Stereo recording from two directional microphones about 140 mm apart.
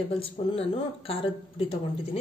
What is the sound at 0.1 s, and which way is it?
Speech, 40° left (ahead or behind).